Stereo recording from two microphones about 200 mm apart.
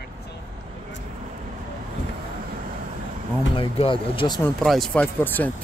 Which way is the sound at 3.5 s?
25° left (ahead or behind).